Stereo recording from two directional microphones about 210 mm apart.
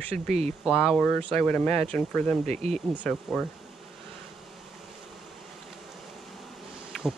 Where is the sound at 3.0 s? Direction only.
5° left (ahead or behind).